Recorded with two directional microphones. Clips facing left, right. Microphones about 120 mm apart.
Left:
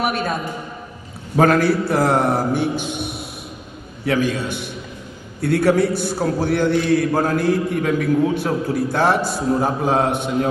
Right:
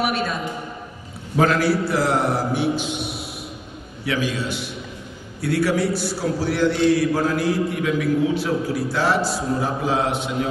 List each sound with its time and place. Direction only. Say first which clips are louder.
0.0 s a man's voice: left 1 dB; 50° left (ahead or behind)